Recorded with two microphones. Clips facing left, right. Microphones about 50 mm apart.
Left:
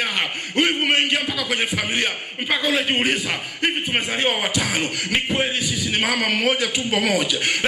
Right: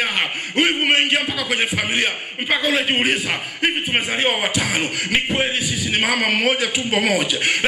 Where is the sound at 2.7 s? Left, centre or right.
Centre.